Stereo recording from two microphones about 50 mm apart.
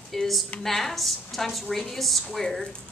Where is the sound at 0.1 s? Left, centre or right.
Centre.